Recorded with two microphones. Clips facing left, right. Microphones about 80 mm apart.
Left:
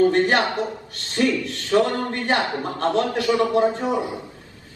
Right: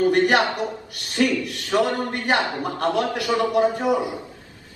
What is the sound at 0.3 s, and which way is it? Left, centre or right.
Speech, right.